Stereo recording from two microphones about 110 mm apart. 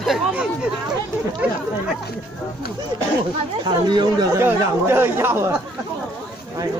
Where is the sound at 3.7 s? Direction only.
45° right (ahead or behind).